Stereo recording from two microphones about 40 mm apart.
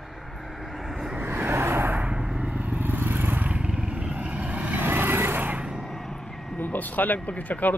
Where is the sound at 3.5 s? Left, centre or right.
Right.